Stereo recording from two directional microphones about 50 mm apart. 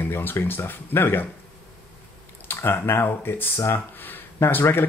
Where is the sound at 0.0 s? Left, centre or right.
Left.